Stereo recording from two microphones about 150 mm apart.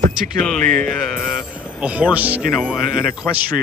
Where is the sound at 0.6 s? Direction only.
65° right (ahead or behind).